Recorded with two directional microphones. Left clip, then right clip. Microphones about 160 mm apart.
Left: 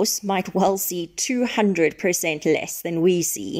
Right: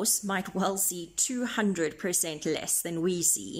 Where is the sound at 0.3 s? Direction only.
20° left (ahead or behind).